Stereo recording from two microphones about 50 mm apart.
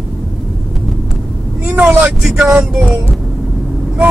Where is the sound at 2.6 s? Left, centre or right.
Centre.